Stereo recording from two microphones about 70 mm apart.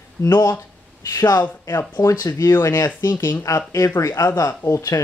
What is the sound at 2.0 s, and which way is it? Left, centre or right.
Speech, left.